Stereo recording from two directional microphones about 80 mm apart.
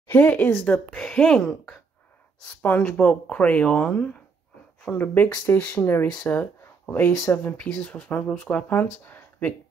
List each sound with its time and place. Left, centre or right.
0.1 s speech: left
0.7 s speech: centre
4.8 s speech: left